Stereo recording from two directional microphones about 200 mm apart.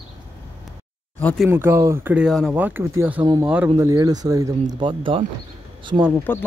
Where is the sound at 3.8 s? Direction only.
15° right (ahead or behind).